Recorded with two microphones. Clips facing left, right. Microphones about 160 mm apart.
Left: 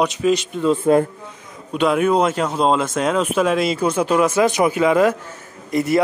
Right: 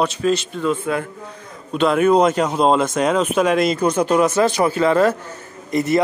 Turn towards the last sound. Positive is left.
turn(degrees=10)  # may be behind; listen again after turning